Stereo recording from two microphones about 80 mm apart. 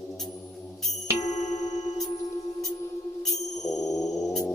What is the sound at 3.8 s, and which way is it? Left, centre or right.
Music, left.